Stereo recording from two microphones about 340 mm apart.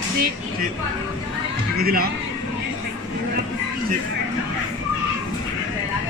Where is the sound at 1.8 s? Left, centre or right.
Right.